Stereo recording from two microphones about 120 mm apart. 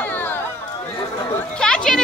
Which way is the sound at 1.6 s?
5° left (ahead or behind).